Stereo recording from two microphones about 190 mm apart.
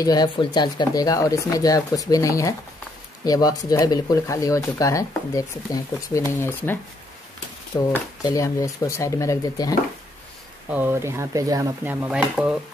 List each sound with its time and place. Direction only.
0.0 s speech: 20° left (ahead or behind)
7.9 s speech: 20° left (ahead or behind)
10.7 s speech: 10° right (ahead or behind)